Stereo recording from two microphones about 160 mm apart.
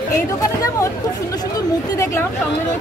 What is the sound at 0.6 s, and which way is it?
Speech, 20° left (ahead or behind).